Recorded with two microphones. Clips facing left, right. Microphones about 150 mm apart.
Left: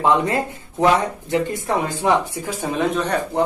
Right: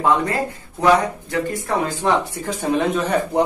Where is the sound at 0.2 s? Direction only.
20° left (ahead or behind).